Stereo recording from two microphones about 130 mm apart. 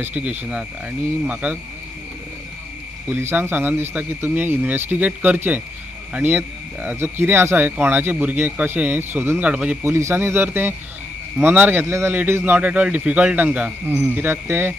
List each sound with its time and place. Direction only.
0.0 s speech: 10° right (ahead or behind)
3.1 s speech: 15° right (ahead or behind)
9.8 s speech: 20° right (ahead or behind)